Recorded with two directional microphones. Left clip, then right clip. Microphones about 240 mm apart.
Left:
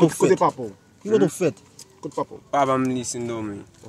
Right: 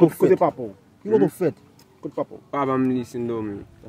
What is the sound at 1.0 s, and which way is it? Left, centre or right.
Speech, centre.